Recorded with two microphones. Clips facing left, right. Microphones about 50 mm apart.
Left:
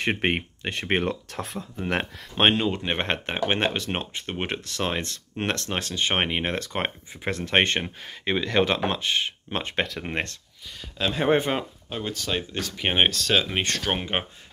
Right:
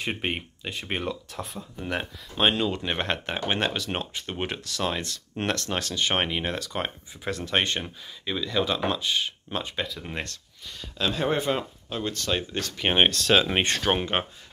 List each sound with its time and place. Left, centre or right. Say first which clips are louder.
0.0 s speech: left 5 dB; left
1.9 s speech: left 3 dB; left
2.5 s speech: left 2 dB; left
11.0 s speech: left 4 dB; centre
11.5 s speech: left 1 dB; centre
13.5 s speech: right 2 dB; centre
13.9 s speech: right 1 dB; centre